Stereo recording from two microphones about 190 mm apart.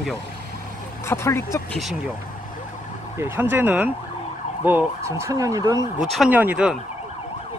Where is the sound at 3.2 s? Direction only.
10° right (ahead or behind).